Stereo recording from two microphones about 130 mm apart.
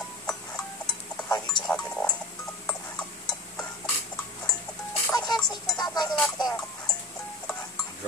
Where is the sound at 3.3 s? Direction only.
5° left (ahead or behind).